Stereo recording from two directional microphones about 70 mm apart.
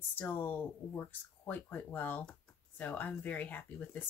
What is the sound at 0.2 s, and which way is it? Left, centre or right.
Speech, left.